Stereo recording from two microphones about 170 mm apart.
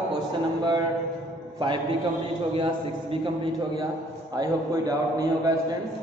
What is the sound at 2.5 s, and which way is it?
A man's voice, 30° right (ahead or behind).